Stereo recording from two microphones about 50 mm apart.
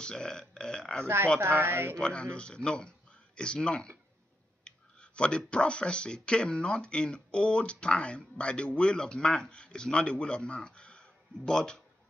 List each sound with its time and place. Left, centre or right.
0.0 s speech: centre
1.0 s speech: right
2.0 s speech: left